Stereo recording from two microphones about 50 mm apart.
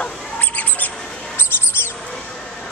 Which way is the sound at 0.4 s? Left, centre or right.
Left.